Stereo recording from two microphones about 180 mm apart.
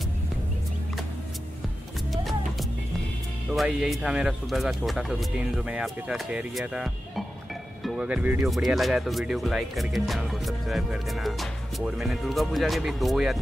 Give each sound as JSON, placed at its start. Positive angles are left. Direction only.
{"t": 3.5, "sound": "speech", "side_deg": 0}